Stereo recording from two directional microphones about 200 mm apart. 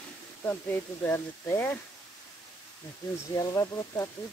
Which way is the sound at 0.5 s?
10° left (ahead or behind).